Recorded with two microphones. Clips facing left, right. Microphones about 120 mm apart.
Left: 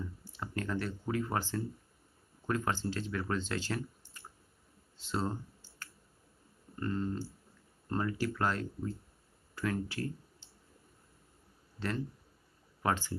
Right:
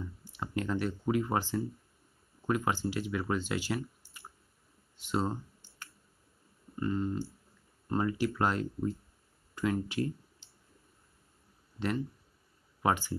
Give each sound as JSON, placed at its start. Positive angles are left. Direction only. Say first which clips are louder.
{"t": 0.2, "sound": "speech", "louder": "right 7 dB", "side_deg": -20}
{"t": 4.9, "sound": "clicking", "louder": "right 3 dB", "side_deg": -15}
{"t": 6.8, "sound": "speech", "louder": "right 3 dB", "side_deg": -10}
{"t": 9.6, "sound": "a sound", "louder": "right 4 dB", "side_deg": -20}
{"t": 11.8, "sound": "speech", "louder": "right 3 dB", "side_deg": -15}